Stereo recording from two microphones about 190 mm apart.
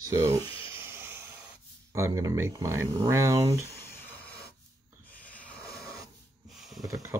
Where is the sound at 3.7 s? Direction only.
15° left (ahead or behind).